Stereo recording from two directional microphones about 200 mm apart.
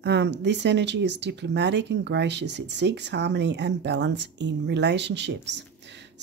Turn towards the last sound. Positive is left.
turn(degrees=-60)  # may be behind; listen again after turning